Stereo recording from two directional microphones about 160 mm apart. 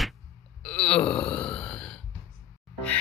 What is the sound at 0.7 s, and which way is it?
Wail, 5° left (ahead or behind).